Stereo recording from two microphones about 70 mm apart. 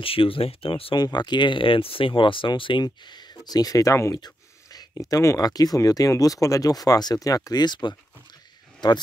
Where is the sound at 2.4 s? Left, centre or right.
Left.